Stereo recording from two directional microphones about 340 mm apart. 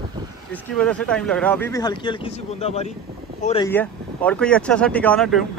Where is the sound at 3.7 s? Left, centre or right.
Centre.